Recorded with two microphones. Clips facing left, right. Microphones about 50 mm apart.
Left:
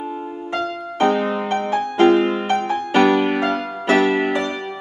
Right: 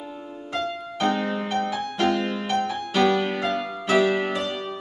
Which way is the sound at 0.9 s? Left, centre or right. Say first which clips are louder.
Left 6 dB; left.